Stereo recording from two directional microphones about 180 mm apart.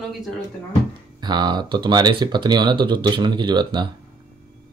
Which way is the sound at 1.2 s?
25° right (ahead or behind).